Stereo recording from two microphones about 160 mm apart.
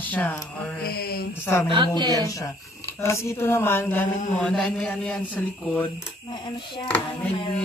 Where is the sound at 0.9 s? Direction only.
75° left (ahead or behind).